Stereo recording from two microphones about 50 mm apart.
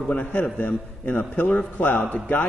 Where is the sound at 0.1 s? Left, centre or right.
Left.